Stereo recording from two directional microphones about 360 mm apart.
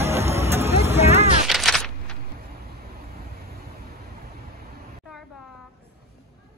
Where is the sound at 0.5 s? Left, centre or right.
Centre.